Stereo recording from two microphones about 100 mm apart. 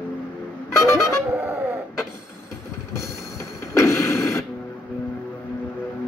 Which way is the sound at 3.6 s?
30° left (ahead or behind).